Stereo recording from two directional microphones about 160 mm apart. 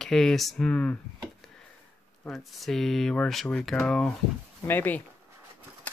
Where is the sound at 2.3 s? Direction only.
Centre (ahead or behind).